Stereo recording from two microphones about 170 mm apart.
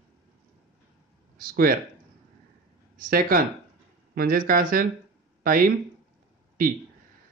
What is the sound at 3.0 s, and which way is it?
Speech, 55° right (ahead or behind).